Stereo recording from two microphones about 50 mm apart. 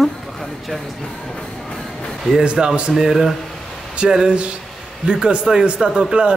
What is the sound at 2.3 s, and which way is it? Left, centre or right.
Speech, centre.